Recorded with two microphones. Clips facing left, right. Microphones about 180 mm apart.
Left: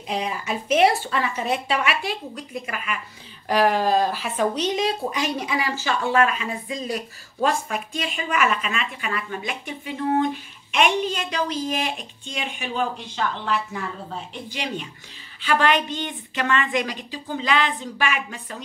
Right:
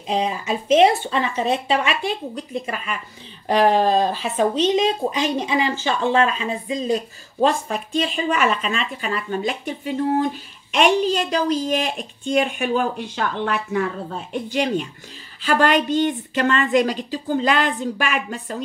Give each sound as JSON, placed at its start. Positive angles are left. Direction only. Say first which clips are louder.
{"t": 0.1, "sound": "a woman's voice", "louder": "right 4 dB", "side_deg": -20}